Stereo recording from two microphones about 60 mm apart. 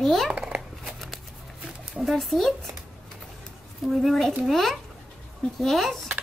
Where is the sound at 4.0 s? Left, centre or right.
Centre.